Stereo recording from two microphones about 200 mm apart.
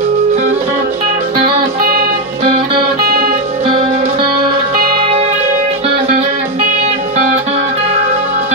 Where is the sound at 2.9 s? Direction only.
50° right (ahead or behind).